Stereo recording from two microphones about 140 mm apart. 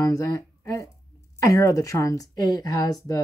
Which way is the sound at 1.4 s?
25° left (ahead or behind).